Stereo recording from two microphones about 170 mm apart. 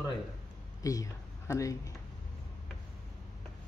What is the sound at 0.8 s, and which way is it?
Speech, 20° left (ahead or behind).